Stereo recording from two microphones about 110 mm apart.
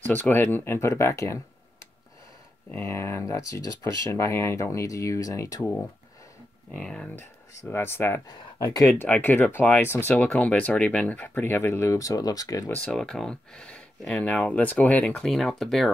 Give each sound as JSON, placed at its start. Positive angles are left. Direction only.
{"t": 0.0, "sound": "speech", "side_deg": 15}
{"t": 2.7, "sound": "speech", "side_deg": 20}
{"t": 5.6, "sound": "speech", "side_deg": 15}
{"t": 7.2, "sound": "speech", "side_deg": 20}
{"t": 8.3, "sound": "speech", "side_deg": 35}
{"t": 8.8, "sound": "speech", "side_deg": 20}
{"t": 12.6, "sound": "speech", "side_deg": 15}
{"t": 12.9, "sound": "speech", "side_deg": 5}